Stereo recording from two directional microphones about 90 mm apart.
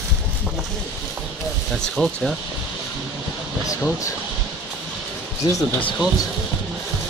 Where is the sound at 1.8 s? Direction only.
Centre (ahead or behind).